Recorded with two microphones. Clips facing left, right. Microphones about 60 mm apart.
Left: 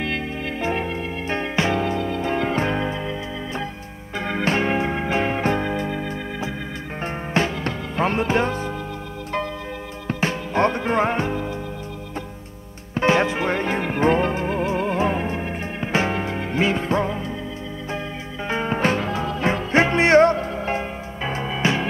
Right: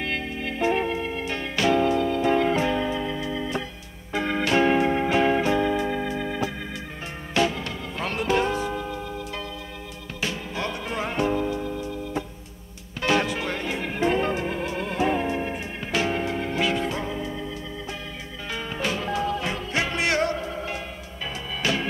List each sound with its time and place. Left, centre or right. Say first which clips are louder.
1.3 s music: left 1 dB; left
2.5 s music: left 1 dB; left
4.1 s music: even; left
10.0 s music: left 6 dB; left
12.9 s music: left 5 dB; left
18.5 s music: left 7 dB; left